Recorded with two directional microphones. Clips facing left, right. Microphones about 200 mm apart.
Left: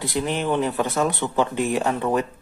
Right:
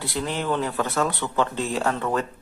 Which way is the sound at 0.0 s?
20° left (ahead or behind).